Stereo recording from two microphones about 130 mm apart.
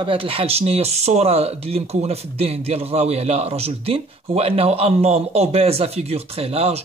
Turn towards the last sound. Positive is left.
turn(degrees=-50)  # may be behind; listen again after turning